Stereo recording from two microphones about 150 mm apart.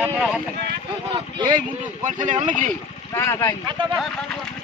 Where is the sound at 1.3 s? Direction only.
30° right (ahead or behind).